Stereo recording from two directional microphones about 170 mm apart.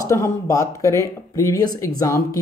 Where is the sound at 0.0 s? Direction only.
20° left (ahead or behind).